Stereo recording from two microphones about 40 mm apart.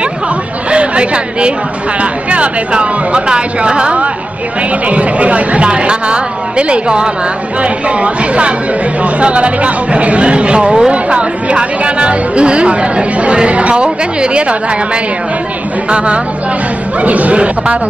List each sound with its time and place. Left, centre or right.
0.7 s a sound: right
2.0 s a woman's voice: right
15.9 s a woman's voice: right